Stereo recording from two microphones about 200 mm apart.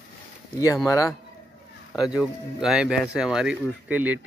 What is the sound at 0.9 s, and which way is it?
Speech, 15° left (ahead or behind).